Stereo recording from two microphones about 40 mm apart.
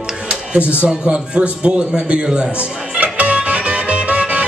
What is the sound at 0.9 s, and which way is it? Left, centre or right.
A man's voice, right.